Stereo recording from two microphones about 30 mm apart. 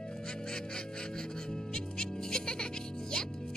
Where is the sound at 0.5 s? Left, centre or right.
Left.